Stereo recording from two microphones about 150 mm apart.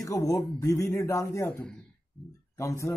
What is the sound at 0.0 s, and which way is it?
Speech, 25° left (ahead or behind).